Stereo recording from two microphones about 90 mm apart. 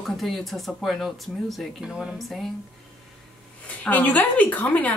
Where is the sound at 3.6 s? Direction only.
20° left (ahead or behind).